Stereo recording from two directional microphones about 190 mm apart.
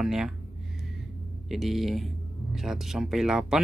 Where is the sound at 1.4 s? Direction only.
Centre (ahead or behind).